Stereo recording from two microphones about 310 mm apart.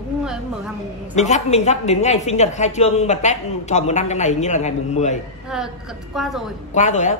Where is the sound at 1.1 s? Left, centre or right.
Left.